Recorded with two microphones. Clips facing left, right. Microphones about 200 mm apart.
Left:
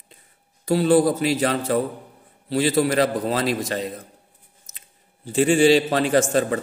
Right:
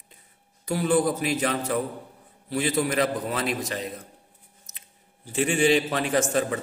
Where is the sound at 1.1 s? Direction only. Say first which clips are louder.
Left 4 dB; 30° left (ahead or behind).